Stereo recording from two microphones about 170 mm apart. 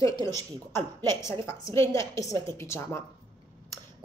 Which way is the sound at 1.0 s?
15° left (ahead or behind).